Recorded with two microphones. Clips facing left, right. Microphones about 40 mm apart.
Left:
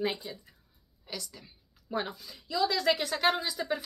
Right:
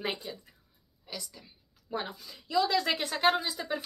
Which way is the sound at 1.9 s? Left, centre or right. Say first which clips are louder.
Left 2 dB; centre.